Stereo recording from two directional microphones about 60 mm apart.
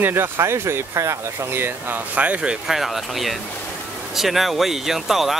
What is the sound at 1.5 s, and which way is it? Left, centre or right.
Speech, right.